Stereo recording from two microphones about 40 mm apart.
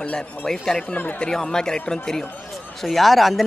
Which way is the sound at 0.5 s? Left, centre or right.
Centre.